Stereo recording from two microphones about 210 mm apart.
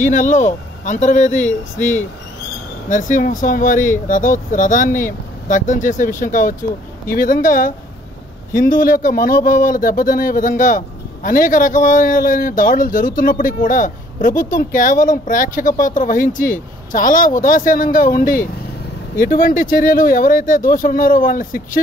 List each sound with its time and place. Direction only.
0.0 s speech: 40° left (ahead or behind)
2.9 s speech: 35° left (ahead or behind)